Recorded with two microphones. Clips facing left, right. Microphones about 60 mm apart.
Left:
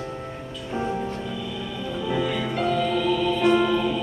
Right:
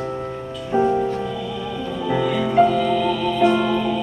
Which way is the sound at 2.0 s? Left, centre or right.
Centre.